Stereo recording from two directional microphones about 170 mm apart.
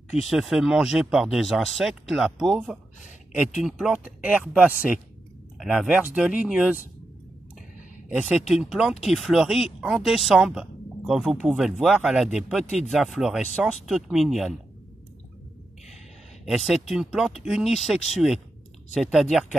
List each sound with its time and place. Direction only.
0.1 s speech: centre (ahead or behind)
8.1 s speech: 5° right (ahead or behind)
12.6 s speech: 45° left (ahead or behind)
12.9 s speech: centre (ahead or behind)
16.4 s speech: centre (ahead or behind)